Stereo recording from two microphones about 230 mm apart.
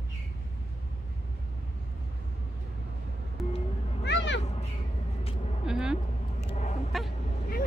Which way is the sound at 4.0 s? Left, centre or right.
Left.